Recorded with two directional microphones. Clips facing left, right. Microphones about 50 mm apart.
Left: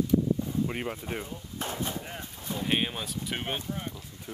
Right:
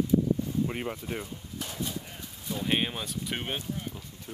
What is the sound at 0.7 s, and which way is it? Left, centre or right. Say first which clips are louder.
Speech: even; centre.